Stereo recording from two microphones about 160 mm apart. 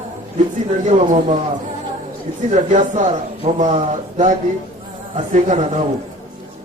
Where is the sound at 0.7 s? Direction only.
45° right (ahead or behind).